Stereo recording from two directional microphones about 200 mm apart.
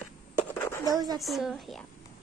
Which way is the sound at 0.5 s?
10° left (ahead or behind).